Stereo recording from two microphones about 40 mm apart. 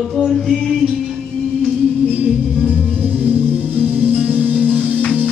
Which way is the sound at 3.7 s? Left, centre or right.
Right.